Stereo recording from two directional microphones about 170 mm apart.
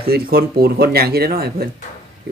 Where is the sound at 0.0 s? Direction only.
65° right (ahead or behind).